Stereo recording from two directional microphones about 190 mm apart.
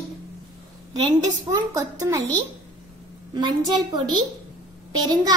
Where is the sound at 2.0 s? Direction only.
20° right (ahead or behind).